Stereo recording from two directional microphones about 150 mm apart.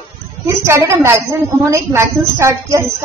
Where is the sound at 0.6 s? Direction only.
20° right (ahead or behind).